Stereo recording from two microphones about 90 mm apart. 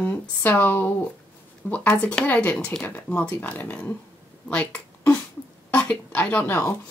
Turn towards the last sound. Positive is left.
turn(degrees=20)  # may be behind; listen again after turning